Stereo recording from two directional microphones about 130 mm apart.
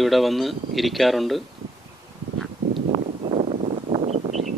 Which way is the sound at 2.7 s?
40° right (ahead or behind).